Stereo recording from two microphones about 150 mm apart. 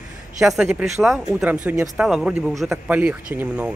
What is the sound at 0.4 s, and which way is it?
Speech, centre (ahead or behind).